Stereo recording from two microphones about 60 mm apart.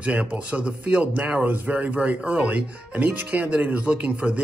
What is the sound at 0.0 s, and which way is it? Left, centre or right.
Speech, centre.